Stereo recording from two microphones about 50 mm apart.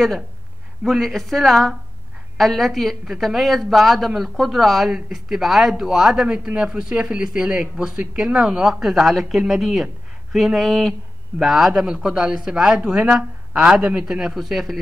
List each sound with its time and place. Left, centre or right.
0.8 s speech: centre